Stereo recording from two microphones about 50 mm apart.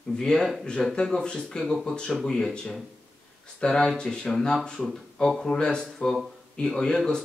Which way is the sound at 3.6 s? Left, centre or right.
Centre.